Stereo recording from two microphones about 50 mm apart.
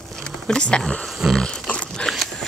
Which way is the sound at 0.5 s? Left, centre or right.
Centre.